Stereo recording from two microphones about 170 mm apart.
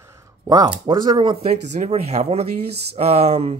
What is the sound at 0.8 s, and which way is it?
Speech, 30° right (ahead or behind).